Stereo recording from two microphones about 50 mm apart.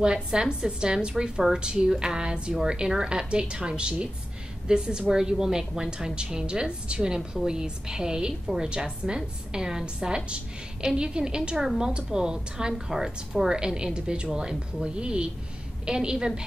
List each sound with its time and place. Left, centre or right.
0.0 s a woman's voice: centre